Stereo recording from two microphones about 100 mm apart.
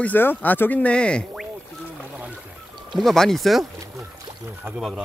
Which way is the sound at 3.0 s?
5° left (ahead or behind).